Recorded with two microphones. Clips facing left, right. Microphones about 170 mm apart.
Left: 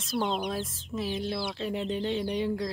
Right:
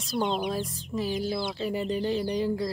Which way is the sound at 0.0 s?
Centre (ahead or behind).